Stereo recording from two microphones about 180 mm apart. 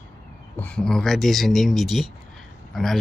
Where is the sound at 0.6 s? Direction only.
5° left (ahead or behind).